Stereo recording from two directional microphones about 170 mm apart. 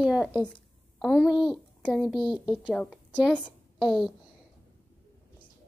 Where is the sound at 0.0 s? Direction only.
5° right (ahead or behind).